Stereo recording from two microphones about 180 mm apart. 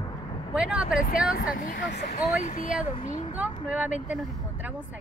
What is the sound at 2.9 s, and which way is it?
Speech, 45° left (ahead or behind).